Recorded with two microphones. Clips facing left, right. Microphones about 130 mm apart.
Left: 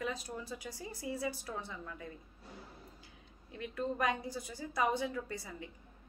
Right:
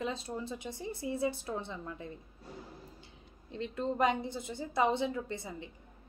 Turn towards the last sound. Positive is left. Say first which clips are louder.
# right 3 dB
turn(degrees=-25)  # may be behind; listen again after turning